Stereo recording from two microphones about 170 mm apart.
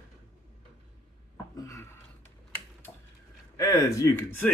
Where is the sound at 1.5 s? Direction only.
20° left (ahead or behind).